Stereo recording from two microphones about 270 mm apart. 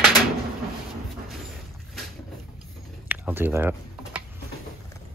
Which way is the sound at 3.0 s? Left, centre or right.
Centre.